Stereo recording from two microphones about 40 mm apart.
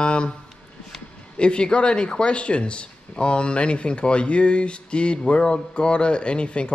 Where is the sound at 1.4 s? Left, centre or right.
Left.